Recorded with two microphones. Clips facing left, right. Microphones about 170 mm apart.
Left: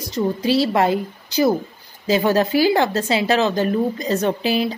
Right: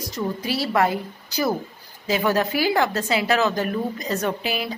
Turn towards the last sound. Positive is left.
turn(degrees=30)  # may be behind; listen again after turning